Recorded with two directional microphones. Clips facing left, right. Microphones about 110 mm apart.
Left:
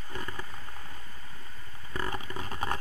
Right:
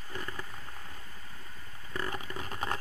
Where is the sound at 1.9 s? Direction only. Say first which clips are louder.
Left 2 dB; 25° left (ahead or behind).